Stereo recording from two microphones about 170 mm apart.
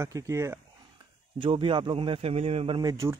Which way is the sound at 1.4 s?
30° right (ahead or behind).